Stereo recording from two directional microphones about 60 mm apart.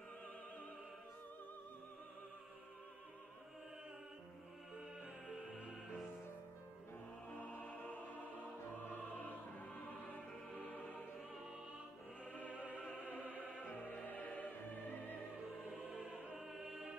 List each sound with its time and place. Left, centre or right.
7.6 s music: left
12.4 s opera: right
13.8 s music: left
16.3 s music: centre